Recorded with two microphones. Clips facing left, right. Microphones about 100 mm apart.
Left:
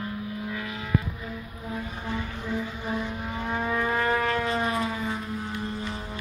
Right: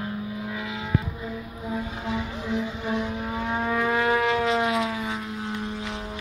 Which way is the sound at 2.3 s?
15° right (ahead or behind).